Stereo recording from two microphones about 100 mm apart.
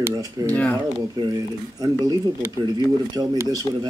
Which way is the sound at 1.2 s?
40° right (ahead or behind).